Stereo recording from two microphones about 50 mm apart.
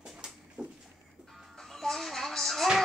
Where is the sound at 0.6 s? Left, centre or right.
Right.